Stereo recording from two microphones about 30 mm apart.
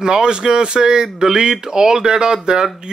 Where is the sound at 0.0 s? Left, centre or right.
Right.